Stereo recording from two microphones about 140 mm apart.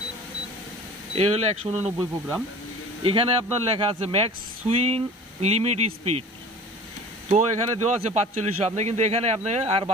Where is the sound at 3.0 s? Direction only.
40° right (ahead or behind).